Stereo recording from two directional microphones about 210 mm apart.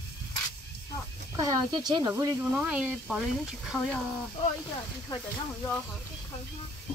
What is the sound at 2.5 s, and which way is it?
Speech, 5° right (ahead or behind).